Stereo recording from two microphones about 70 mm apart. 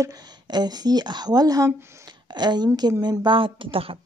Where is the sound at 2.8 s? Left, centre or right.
Right.